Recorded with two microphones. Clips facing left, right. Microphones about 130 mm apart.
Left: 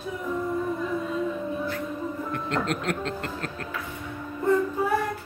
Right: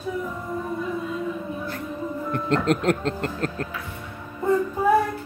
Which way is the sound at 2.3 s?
40° right (ahead or behind).